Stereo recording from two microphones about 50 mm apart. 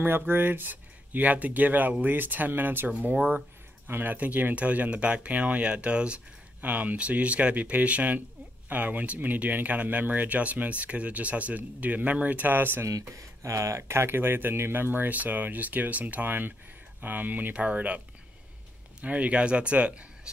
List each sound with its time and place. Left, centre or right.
0.3 s speech: right
2.9 s speech: right
3.8 s speech: right
6.6 s speech: right
13.4 s speech: right